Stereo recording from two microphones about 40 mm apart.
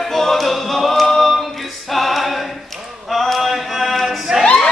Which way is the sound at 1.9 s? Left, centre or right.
Centre.